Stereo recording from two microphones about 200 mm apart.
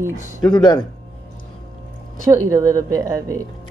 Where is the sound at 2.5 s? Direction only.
15° right (ahead or behind).